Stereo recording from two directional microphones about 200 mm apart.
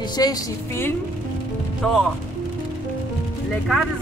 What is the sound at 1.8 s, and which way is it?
Speech, 5° left (ahead or behind).